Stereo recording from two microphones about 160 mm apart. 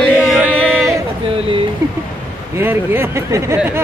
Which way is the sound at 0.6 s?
Centre (ahead or behind).